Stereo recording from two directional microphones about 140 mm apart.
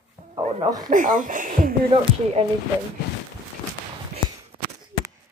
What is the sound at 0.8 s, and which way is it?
Speech, 70° right (ahead or behind).